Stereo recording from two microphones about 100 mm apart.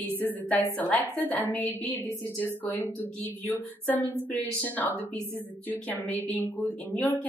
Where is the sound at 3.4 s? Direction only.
20° left (ahead or behind).